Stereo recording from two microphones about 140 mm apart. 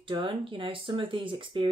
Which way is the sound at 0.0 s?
40° right (ahead or behind).